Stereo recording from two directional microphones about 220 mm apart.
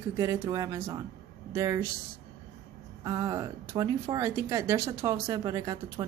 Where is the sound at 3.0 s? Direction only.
15° right (ahead or behind).